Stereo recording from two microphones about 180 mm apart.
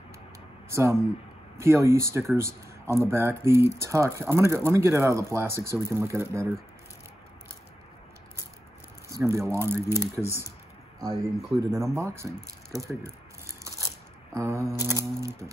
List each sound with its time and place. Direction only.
0.7 s speech: 15° right (ahead or behind)
9.2 s speech: 15° right (ahead or behind)
12.8 s a sound: 15° right (ahead or behind)
14.3 s speech: 15° right (ahead or behind)